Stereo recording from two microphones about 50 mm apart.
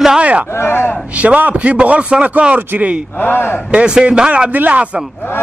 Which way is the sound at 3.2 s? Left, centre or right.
Left.